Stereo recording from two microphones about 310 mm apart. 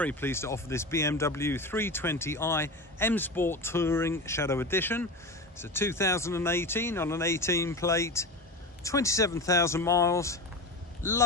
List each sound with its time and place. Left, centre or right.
0.0 s speech: centre